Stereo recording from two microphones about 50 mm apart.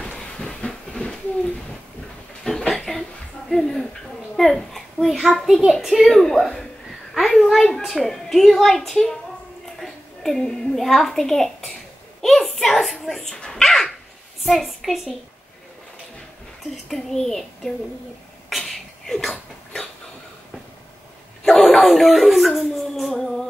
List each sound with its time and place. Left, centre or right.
0.1 s a sound: left
2.7 s a sound: centre
4.4 s a child's voice: centre
6.0 s a child's voice: centre
12.2 s a sound: centre
13.0 s dog: centre
14.6 s a woman's voice: centre
16.9 s a child's voice: centre
18.5 s beatboxing: centre
21.5 s speech: centre